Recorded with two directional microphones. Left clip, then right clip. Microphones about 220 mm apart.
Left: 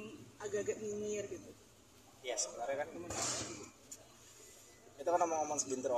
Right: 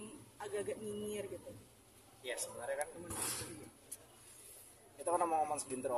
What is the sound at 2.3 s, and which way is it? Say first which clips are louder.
Speech: left 3 dB; 10° right (ahead or behind).